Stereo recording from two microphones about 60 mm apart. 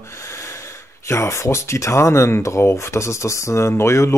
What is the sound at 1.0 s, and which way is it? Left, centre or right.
Speech, left.